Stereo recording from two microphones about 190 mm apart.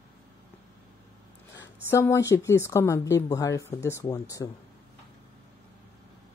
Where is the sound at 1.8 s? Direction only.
15° left (ahead or behind).